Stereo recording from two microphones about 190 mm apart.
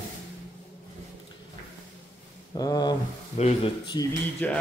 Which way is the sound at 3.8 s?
20° left (ahead or behind).